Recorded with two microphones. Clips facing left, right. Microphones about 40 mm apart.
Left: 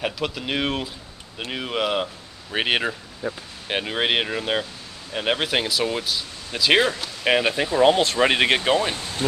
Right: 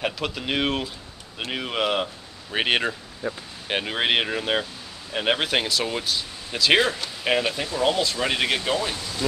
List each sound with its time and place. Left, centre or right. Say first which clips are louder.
0.0 s speech: left 1 dB; centre
7.3 s speech: left 6 dB; left